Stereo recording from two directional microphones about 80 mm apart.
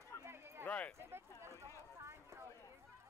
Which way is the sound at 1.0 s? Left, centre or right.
Right.